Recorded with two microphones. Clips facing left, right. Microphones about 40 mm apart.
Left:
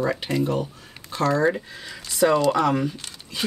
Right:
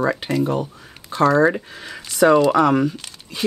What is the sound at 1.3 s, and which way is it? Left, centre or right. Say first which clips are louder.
Speech: right 4 dB; right.